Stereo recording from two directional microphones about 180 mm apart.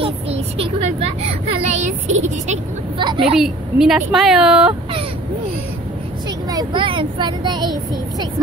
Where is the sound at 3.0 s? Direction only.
25° right (ahead or behind).